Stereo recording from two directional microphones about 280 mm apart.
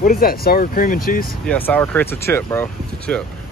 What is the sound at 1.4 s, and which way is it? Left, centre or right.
Speech, centre.